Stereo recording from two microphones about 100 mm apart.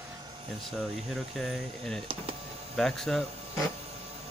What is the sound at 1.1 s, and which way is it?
Speech, centre (ahead or behind).